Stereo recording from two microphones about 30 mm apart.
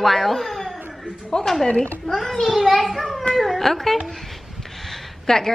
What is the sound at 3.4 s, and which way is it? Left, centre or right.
Speech, centre.